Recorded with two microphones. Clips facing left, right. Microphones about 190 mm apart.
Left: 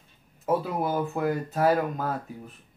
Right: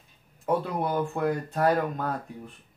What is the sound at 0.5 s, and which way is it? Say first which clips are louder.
Speech: left 1 dB; 5° left (ahead or behind).